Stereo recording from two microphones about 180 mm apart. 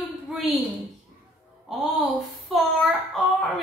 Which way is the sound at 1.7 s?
Centre (ahead or behind).